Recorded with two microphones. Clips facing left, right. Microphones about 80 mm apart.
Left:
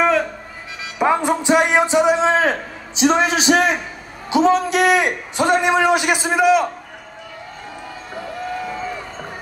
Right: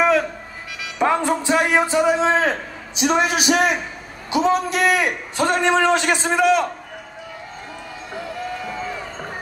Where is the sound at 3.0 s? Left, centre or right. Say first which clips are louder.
Left 3 dB; left; by 6.6 s centre.